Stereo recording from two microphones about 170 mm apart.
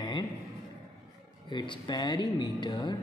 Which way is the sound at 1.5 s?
25° left (ahead or behind).